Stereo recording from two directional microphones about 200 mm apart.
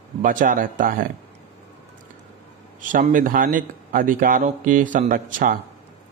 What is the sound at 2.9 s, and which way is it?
Speech, 40° right (ahead or behind).